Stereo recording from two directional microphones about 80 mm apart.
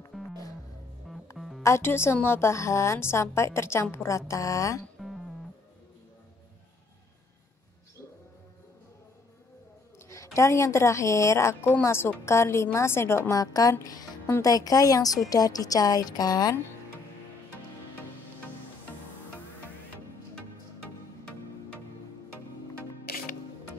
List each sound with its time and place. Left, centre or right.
1.1 s music: centre
1.6 s a woman's voice: left
4.3 s a woman's voice: left
10.0 s a woman's voice: left
13.3 s a woman's voice: left